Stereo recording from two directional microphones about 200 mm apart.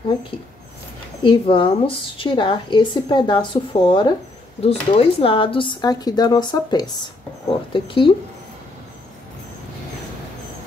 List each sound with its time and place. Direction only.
1.2 s a woman's voice: 25° left (ahead or behind)